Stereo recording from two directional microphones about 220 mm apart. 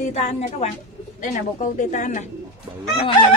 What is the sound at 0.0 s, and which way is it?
Chicken, 30° left (ahead or behind).